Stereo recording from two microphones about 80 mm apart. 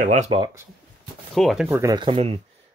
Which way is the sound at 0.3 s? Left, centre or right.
Right.